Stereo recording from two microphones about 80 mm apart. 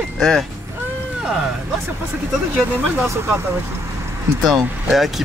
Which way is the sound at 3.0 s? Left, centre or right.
Right.